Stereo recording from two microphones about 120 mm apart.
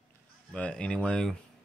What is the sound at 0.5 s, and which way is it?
Speech, 10° left (ahead or behind).